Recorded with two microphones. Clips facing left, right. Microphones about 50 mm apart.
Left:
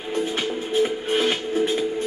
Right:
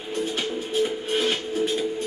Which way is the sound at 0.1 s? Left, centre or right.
Left.